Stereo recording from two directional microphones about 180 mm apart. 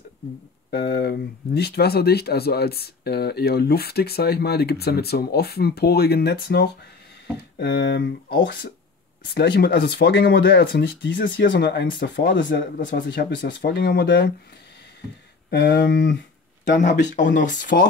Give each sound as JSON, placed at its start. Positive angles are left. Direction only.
{"t": 0.7, "sound": "speech", "side_deg": 65}
{"t": 15.5, "sound": "speech", "side_deg": 70}
{"t": 16.7, "sound": "speech", "side_deg": 45}